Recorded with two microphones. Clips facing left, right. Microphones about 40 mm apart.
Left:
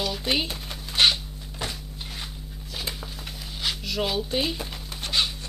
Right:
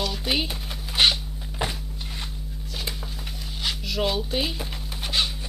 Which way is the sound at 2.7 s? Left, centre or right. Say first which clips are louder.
Even; centre.